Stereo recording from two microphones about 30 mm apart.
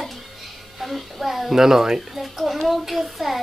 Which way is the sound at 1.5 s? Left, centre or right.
Centre.